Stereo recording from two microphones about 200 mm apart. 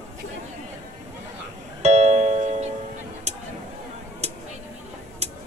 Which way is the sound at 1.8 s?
35° right (ahead or behind).